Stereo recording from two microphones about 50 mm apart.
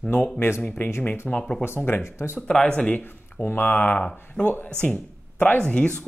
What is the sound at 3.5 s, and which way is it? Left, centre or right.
Speech, left.